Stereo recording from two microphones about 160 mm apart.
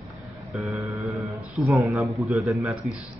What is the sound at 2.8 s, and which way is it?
Speech, 40° right (ahead or behind).